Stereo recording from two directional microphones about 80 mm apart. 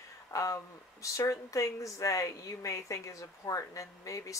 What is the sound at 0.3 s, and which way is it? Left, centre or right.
Speech, left.